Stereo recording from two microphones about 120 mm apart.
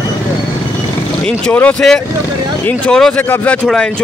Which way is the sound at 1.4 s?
10° left (ahead or behind).